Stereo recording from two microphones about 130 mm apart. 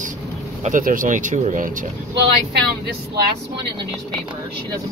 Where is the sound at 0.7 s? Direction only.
90° right.